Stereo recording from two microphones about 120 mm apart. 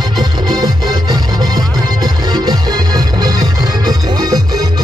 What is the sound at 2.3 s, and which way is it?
Music, 35° right (ahead or behind).